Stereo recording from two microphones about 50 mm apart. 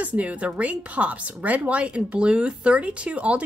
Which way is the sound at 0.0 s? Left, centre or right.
Right.